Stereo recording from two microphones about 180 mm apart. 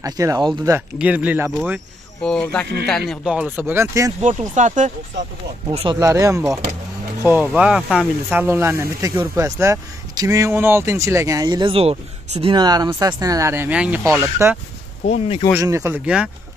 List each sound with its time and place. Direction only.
0.0 s speech: 20° right (ahead or behind)
0.7 s speech: 10° right (ahead or behind)
2.2 s speech: 5° left (ahead or behind)
3.1 s speech: 5° right (ahead or behind)
4.2 s speech: 45° right (ahead or behind)
5.9 s speech: 15° right (ahead or behind)
15.0 s speech: 35° left (ahead or behind)
15.6 s speech: 15° right (ahead or behind)